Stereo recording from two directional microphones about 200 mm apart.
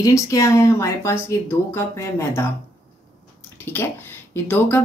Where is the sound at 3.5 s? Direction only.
10° left (ahead or behind).